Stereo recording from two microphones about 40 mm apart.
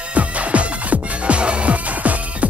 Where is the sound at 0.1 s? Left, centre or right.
Right.